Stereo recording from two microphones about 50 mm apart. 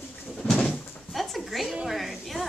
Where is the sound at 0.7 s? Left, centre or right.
Centre.